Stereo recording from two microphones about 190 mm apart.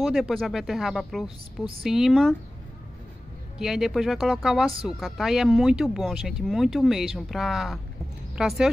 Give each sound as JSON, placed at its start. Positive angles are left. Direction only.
{"t": 0.0, "sound": "speech", "side_deg": 0}
{"t": 3.5, "sound": "speech", "side_deg": 0}